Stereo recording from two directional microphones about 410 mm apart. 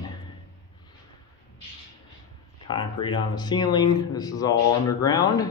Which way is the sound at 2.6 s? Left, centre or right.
Centre.